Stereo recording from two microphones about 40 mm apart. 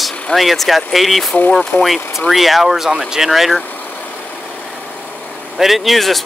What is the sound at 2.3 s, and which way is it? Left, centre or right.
Speech, centre.